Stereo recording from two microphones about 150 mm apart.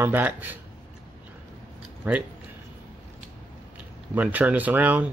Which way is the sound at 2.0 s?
15° right (ahead or behind).